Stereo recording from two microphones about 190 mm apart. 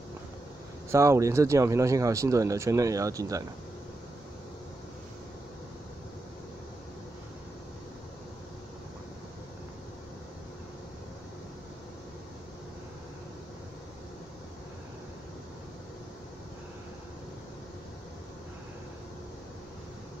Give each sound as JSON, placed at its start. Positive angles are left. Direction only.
{"t": 0.9, "sound": "speech", "side_deg": -15}